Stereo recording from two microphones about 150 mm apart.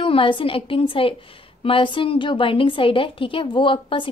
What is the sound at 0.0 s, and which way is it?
A woman's voice, 35° left (ahead or behind).